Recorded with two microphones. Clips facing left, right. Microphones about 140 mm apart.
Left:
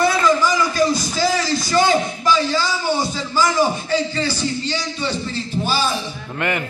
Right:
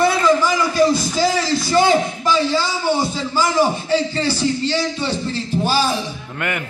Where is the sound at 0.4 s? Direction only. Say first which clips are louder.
Right 2 dB; 25° right (ahead or behind).